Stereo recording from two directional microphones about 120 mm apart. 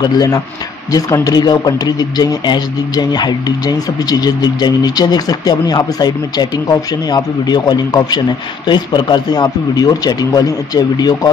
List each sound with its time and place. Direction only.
0.0 s speech: 30° left (ahead or behind)